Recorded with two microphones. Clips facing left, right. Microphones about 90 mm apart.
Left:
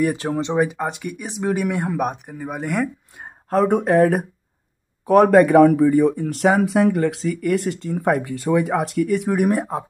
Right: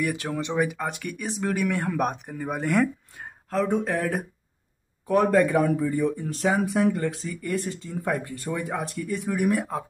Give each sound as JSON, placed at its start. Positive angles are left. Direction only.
{"t": 0.0, "sound": "speech", "side_deg": 30}
{"t": 3.6, "sound": "speech", "side_deg": 55}
{"t": 5.0, "sound": "speech", "side_deg": 80}
{"t": 9.4, "sound": "speech", "side_deg": 35}